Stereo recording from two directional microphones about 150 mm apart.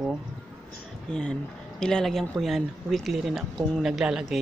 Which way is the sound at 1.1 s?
5° left (ahead or behind).